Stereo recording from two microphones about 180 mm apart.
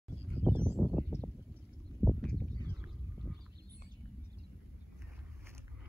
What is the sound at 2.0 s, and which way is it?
Horse, 5° left (ahead or behind).